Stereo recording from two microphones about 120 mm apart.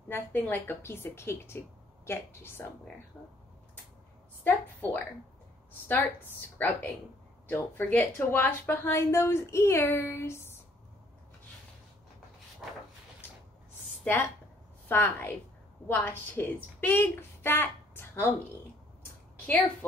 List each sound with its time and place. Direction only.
0.1 s a woman's voice: 15° left (ahead or behind)
3.1 s speech: centre (ahead or behind)
4.5 s a woman's voice: 15° left (ahead or behind)
14.0 s a woman's voice: 15° left (ahead or behind)
19.4 s a woman's voice: 15° left (ahead or behind)